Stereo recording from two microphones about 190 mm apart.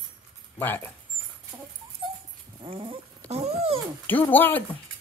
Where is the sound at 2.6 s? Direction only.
30° right (ahead or behind).